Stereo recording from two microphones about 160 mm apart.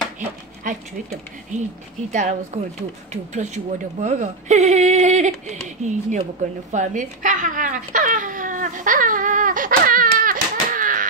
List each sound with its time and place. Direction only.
0.7 s speech: 55° right (ahead or behind)
2.1 s speech: 45° right (ahead or behind)
6.7 s babbling: 50° right (ahead or behind)